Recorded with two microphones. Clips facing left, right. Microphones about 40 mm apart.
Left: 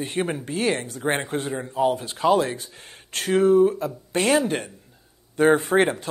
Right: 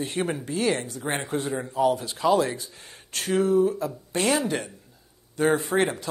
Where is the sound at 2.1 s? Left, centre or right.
Left.